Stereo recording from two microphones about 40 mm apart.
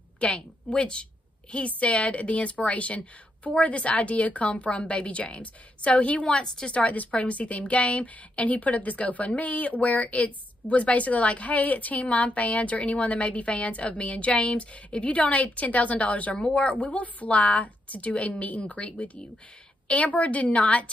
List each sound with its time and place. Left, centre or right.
0.2 s a woman's voice: left
6.4 s a woman's voice: left
6.8 s a woman's voice: left
16.3 s a woman's voice: left
16.8 s a woman's voice: left
19.9 s a woman's voice: left